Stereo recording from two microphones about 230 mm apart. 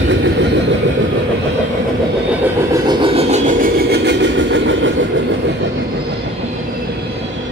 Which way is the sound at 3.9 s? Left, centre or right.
Right.